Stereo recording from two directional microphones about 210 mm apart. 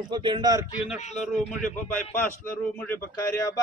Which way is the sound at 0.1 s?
20° right (ahead or behind).